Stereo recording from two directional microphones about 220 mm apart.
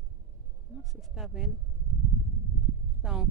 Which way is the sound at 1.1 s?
5° right (ahead or behind).